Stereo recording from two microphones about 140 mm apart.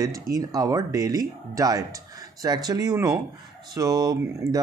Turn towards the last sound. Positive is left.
turn(degrees=-25)  # may be behind; listen again after turning